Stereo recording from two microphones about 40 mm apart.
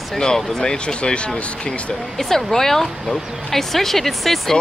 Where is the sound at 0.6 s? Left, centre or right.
Centre.